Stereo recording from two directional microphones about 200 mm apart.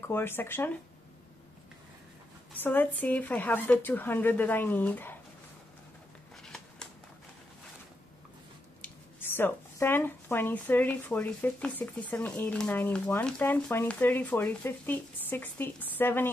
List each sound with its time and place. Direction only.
0.1 s speech: 10° left (ahead or behind)
2.5 s speech: 10° left (ahead or behind)
6.4 s shuffling cards: 5° left (ahead or behind)
8.8 s speech: 10° left (ahead or behind)